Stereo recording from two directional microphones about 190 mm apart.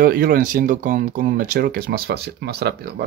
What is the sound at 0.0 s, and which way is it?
Speech, 50° right (ahead or behind).